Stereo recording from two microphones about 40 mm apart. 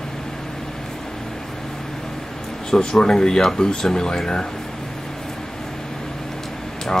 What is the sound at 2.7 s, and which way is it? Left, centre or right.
Speech, centre.